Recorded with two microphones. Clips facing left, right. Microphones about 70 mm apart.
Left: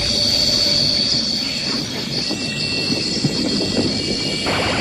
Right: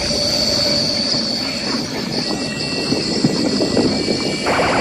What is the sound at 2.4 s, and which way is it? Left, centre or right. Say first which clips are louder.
Vehicle: right 3 dB; right.